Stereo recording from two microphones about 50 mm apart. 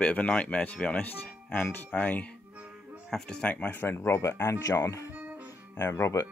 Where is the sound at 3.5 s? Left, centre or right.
Left.